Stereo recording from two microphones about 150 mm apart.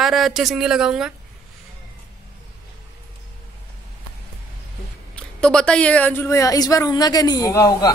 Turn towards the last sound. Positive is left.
turn(degrees=20)  # may be behind; listen again after turning